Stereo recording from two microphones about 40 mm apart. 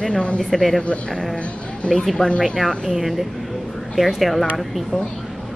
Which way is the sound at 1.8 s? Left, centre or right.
Left.